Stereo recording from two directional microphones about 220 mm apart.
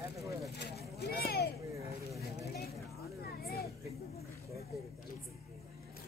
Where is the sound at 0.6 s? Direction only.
45° left (ahead or behind).